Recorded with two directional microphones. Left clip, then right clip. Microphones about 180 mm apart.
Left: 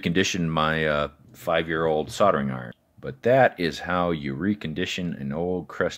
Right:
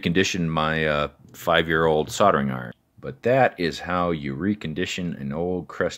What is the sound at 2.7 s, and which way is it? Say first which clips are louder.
Speech: even; centre (ahead or behind).